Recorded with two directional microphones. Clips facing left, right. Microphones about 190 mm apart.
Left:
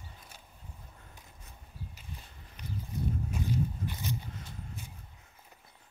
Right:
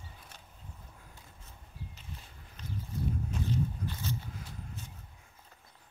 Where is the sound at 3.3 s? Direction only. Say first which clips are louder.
Left 1 dB; 15° left (ahead or behind).